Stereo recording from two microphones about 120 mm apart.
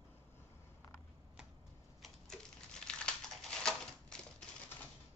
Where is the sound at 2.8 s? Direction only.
5° left (ahead or behind).